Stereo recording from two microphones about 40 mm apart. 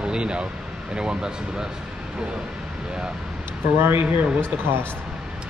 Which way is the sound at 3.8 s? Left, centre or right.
Right.